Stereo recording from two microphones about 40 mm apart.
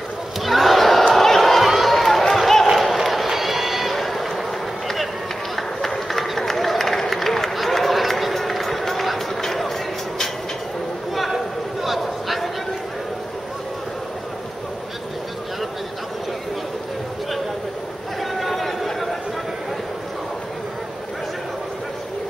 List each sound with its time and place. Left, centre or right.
0.4 s a sound: centre
2.8 s run: centre
5.6 s run: centre
9.4 s music: centre
11.1 s a sound: centre
18.4 s chatter: centre